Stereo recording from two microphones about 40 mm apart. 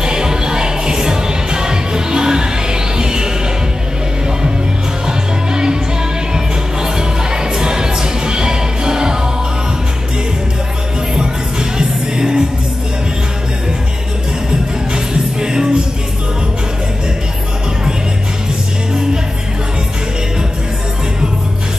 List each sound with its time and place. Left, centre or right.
0.0 s music: centre
5.0 s music: centre
11.8 s music: centre
15.4 s music: centre